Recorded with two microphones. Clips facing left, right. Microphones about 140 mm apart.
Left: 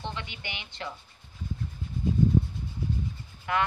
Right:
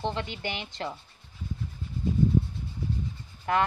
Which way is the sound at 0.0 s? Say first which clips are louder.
Right 6 dB; 35° right (ahead or behind).